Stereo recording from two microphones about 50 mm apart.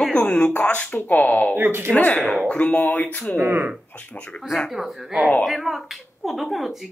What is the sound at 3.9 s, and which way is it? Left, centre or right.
Speech, left.